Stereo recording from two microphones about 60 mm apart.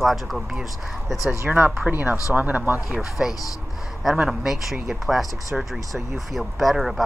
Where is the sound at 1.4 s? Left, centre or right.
Right.